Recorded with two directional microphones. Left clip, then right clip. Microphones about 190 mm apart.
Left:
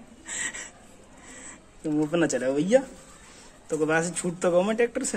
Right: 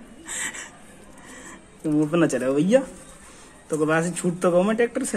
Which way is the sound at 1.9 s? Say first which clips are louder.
Right 4 dB; centre (ahead or behind).